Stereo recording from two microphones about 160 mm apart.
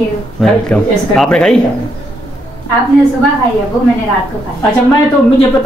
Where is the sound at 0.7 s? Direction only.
5° left (ahead or behind).